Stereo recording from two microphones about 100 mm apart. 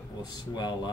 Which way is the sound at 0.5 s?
45° left (ahead or behind).